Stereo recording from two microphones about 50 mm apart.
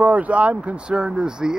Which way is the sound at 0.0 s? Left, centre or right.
Right.